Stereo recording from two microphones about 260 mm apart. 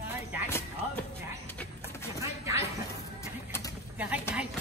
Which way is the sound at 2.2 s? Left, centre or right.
Centre.